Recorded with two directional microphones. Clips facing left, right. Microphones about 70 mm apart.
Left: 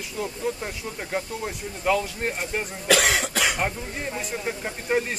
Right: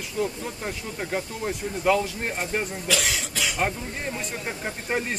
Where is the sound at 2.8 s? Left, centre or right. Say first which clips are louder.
Left 6 dB; left.